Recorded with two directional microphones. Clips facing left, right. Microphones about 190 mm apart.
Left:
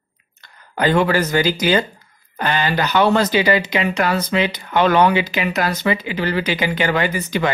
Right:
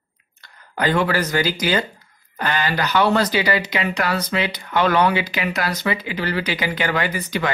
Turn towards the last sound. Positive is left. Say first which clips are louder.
# left 3 dB
turn(degrees=25)  # may be behind; listen again after turning